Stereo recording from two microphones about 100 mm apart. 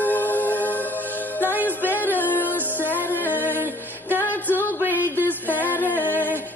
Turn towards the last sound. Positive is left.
turn(degrees=20)  # may be behind; listen again after turning